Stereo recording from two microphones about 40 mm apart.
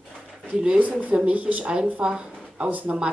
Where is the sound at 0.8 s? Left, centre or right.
Right.